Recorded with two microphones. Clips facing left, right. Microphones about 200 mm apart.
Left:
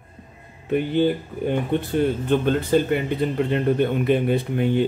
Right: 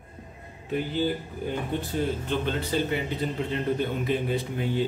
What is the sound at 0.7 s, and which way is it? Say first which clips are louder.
Speech: left 7 dB; 60° left (ahead or behind).